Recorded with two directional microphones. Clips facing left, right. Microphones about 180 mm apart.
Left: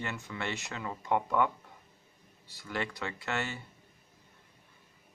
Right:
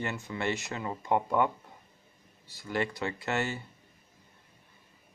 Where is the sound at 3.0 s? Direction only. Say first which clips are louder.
Right 4 dB; 40° right (ahead or behind).